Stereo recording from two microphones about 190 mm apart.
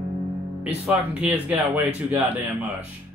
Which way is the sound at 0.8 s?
10° right (ahead or behind).